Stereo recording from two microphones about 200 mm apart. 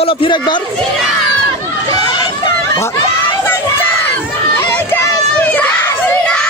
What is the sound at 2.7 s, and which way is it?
Speech, 15° left (ahead or behind).